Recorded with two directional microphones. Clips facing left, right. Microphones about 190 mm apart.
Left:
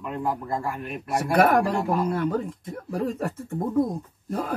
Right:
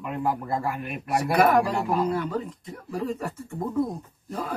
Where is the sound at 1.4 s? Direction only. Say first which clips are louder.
Left 1 dB; 50° left (ahead or behind).